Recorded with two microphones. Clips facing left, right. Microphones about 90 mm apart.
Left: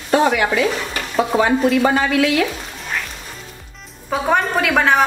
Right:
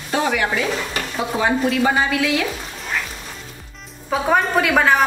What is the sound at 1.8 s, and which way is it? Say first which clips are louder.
Speech: left 3 dB; 55° left (ahead or behind).